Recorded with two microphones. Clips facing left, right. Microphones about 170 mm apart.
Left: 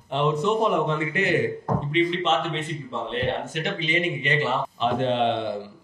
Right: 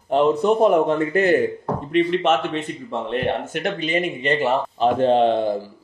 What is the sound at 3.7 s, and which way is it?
Speech, 50° right (ahead or behind).